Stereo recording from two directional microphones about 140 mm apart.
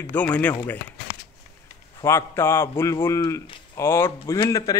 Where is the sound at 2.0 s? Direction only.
20° left (ahead or behind).